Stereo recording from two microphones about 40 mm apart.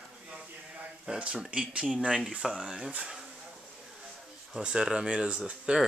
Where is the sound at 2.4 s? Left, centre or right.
Centre.